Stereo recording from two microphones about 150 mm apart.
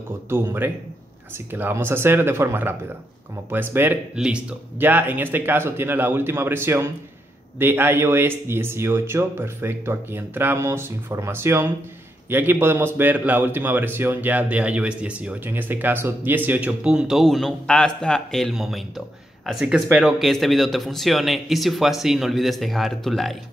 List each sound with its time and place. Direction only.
0.3 s a man's voice: 15° right (ahead or behind); by 23.3 s centre (ahead or behind)